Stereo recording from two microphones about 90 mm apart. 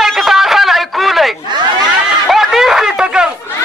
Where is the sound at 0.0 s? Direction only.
Centre (ahead or behind).